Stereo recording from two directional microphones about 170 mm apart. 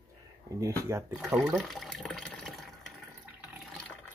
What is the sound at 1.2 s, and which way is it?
Water, centre (ahead or behind).